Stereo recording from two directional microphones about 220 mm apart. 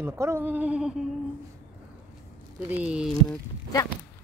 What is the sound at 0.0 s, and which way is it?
Speech, 10° right (ahead or behind).